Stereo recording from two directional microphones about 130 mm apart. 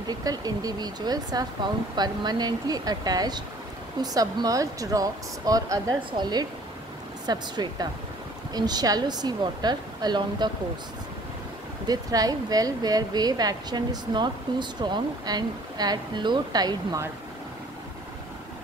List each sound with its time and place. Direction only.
0.0 s speech: 30° right (ahead or behind)
11.9 s speech: 30° right (ahead or behind)